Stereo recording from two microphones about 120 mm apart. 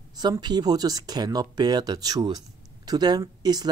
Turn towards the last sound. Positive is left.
turn(degrees=-35)  # may be behind; listen again after turning